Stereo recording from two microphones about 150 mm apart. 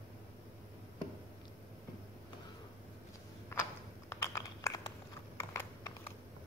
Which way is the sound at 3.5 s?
15° left (ahead or behind).